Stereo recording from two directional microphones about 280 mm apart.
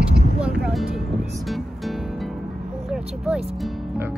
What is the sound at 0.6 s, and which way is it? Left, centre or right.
Speech, centre.